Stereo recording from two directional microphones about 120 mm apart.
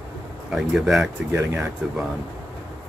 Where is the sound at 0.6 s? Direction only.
Centre (ahead or behind).